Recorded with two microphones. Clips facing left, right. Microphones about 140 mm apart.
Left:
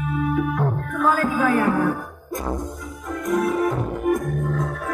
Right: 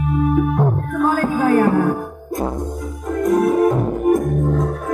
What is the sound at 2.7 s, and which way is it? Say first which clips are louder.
Music: right 8 dB; 45° right (ahead or behind).